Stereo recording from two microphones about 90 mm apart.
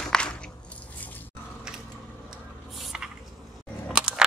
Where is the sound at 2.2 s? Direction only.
5° right (ahead or behind).